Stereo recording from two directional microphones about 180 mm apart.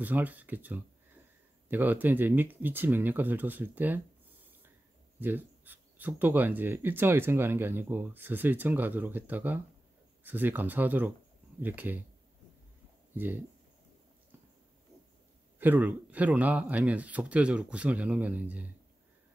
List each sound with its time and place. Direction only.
0.0 s speech: 10° right (ahead or behind)
5.2 s speech: 10° right (ahead or behind)
13.1 s speech: 10° right (ahead or behind)
15.6 s speech: 10° right (ahead or behind)